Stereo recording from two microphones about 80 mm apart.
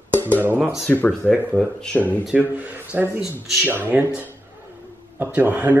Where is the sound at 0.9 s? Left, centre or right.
Left.